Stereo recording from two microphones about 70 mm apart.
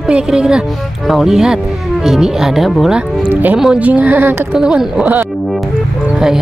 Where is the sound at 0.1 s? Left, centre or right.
Centre.